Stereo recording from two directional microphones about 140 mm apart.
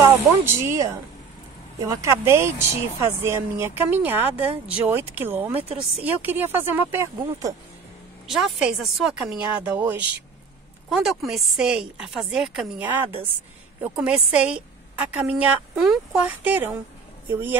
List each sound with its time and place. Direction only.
0.0 s a woman's voice: 20° right (ahead or behind)
8.3 s a woman's voice: 5° right (ahead or behind)